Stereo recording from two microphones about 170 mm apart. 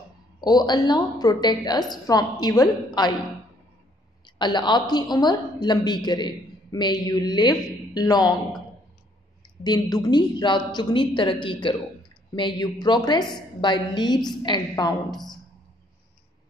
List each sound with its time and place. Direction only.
0.4 s a woman's voice: 25° left (ahead or behind)
4.4 s a woman's voice: 25° left (ahead or behind)
9.6 s a woman's voice: 25° left (ahead or behind)